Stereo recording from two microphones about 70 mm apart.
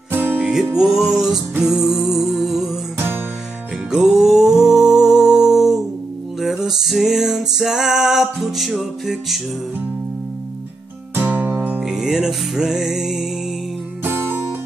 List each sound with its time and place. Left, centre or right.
0.4 s music: centre
3.9 s music: centre
11.1 s music: right
11.8 s music: centre
14.0 s music: right